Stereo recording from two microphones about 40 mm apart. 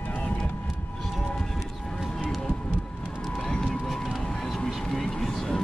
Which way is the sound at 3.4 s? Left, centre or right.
Centre.